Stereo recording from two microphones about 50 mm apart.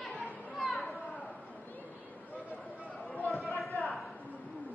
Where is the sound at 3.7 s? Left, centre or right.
Left.